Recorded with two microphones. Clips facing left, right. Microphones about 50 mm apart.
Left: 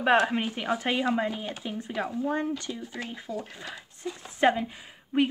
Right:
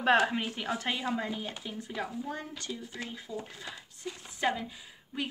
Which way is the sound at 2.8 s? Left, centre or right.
Left.